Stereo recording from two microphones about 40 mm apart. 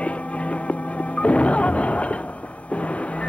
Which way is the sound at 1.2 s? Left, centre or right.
Left.